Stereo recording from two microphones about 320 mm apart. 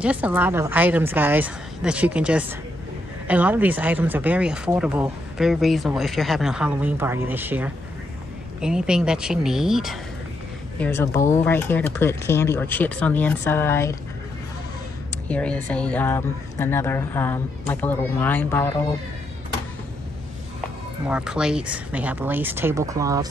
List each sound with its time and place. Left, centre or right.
0.0 s speech: centre
15.2 s speech: centre
21.1 s speech: centre